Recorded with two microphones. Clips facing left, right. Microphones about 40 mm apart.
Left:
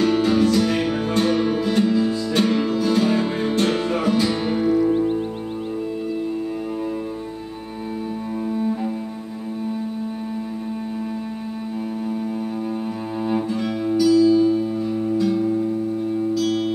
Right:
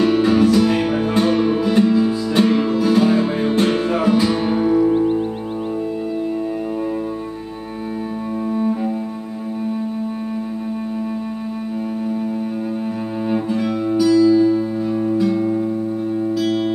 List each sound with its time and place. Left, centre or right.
0.0 s music: centre
13.3 s music: centre
14.1 s music: centre
15.1 s music: centre